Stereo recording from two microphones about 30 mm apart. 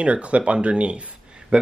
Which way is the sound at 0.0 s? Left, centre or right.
Right.